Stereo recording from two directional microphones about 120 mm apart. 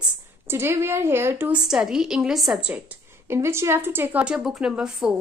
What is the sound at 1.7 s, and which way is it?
A woman's voice, 5° right (ahead or behind).